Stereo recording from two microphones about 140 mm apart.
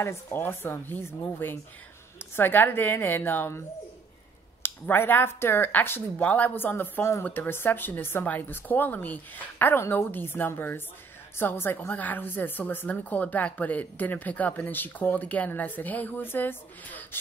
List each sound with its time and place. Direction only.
0.0 s speech: 15° left (ahead or behind)
4.6 s speech: 15° left (ahead or behind)